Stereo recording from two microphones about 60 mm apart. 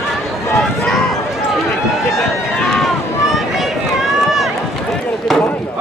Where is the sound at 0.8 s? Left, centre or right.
Centre.